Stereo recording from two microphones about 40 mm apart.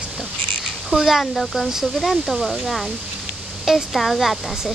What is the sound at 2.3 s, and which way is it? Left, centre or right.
Speech, centre.